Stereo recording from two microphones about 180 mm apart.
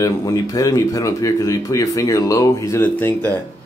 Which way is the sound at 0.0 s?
20° left (ahead or behind).